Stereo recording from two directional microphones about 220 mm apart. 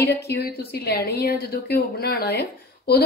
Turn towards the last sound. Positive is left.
turn(degrees=45)  # may be behind; listen again after turning